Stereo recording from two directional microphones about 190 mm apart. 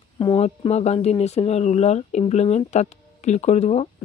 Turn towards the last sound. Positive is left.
turn(degrees=35)  # may be behind; listen again after turning